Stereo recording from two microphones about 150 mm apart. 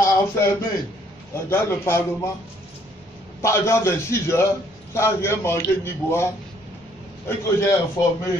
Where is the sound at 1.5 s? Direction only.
15° left (ahead or behind).